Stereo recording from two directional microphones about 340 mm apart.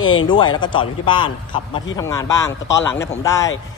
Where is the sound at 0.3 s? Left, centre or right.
Centre.